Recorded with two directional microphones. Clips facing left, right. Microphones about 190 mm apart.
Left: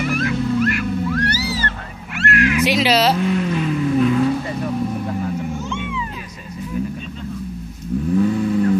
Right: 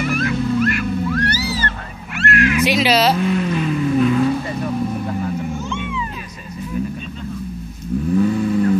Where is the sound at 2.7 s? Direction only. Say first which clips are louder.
Even; 15° right (ahead or behind).